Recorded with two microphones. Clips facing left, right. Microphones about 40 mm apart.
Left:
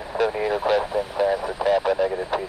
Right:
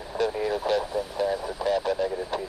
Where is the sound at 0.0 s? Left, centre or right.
Left.